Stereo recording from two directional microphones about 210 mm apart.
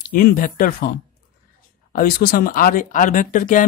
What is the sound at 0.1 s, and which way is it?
Speech, 45° left (ahead or behind).